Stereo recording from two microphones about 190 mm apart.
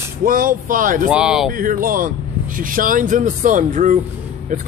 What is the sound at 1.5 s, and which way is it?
Speech, 45° right (ahead or behind).